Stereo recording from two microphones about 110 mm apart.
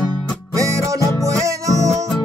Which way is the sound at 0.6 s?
30° right (ahead or behind).